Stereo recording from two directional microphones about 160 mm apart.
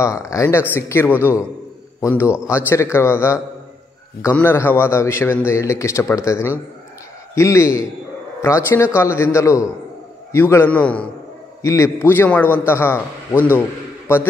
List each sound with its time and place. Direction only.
0.0 s a man's voice: 20° left (ahead or behind)
11.6 s a man's voice: 20° left (ahead or behind)